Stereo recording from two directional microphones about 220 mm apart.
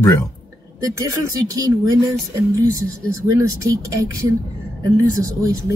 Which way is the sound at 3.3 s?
15° right (ahead or behind).